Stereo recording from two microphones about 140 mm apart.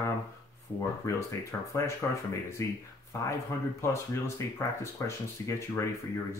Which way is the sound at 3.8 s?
20° left (ahead or behind).